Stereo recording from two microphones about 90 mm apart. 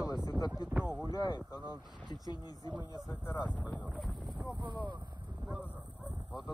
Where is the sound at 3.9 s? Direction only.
Centre (ahead or behind).